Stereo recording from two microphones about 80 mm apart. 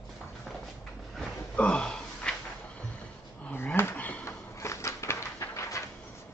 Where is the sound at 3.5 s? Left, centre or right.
Left.